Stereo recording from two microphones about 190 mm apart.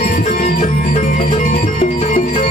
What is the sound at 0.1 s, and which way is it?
Music, 40° left (ahead or behind).